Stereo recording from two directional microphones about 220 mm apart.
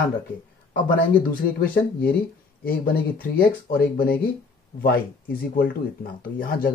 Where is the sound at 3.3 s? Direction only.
40° left (ahead or behind).